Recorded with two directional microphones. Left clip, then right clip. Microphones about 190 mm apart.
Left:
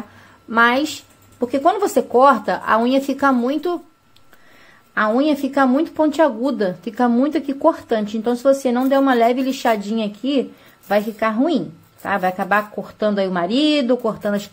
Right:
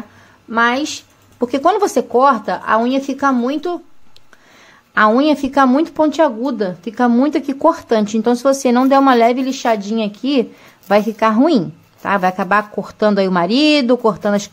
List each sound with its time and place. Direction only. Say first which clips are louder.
0.5 s speech: even; centre (ahead or behind)
4.9 s a woman's voice: right 5 dB; 15° right (ahead or behind)